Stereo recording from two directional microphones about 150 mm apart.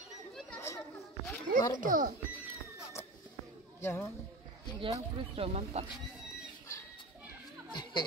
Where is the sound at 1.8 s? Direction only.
65° right (ahead or behind).